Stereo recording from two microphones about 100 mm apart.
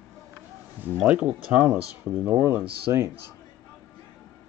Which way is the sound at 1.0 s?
10° right (ahead or behind).